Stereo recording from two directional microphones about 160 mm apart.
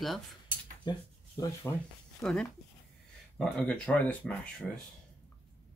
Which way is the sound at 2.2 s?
5° left (ahead or behind).